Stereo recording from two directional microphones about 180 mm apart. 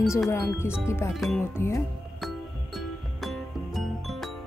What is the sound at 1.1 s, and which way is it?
Music, centre (ahead or behind).